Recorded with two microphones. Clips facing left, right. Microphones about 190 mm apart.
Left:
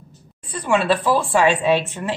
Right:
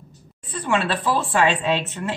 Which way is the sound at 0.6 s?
10° left (ahead or behind).